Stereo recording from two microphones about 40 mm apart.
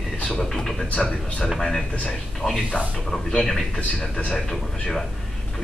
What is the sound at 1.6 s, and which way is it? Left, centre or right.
A man's voice, centre.